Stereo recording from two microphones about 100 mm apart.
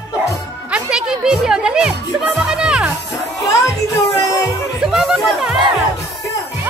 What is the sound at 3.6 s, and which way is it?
Music, 35° left (ahead or behind).